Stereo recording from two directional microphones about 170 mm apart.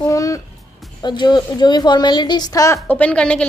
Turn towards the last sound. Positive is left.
turn(degrees=5)  # may be behind; listen again after turning